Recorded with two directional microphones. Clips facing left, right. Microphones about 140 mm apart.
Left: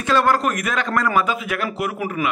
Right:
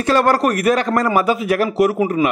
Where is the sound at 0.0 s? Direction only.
40° right (ahead or behind).